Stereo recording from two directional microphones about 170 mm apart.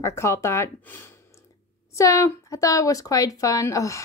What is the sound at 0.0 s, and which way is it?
Speech, 15° left (ahead or behind).